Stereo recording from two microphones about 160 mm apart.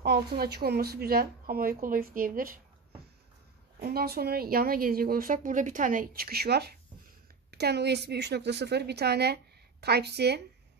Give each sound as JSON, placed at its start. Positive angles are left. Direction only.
{"t": 0.0, "sound": "speech", "side_deg": -85}
{"t": 3.8, "sound": "a woman's voice", "side_deg": -75}